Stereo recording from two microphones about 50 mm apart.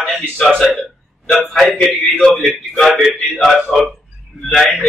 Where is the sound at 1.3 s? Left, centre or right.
Centre.